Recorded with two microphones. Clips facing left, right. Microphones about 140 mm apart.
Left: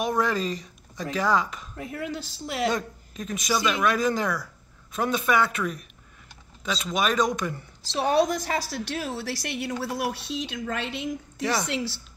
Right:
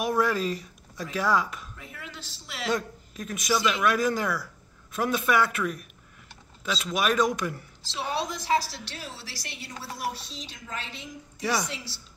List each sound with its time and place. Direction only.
0.0 s a sound: 5° right (ahead or behind)
1.1 s a man's voice: 5° right (ahead or behind)
1.8 s speech: 45° left (ahead or behind)
2.7 s a man's voice: centre (ahead or behind)
8.2 s a woman's voice: 50° left (ahead or behind); by 12.0 s 65° left (ahead or behind)